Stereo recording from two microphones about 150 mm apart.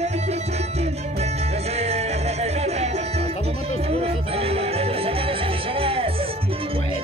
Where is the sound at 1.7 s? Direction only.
45° right (ahead or behind).